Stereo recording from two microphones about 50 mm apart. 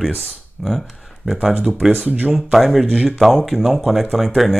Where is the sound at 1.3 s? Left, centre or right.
Centre.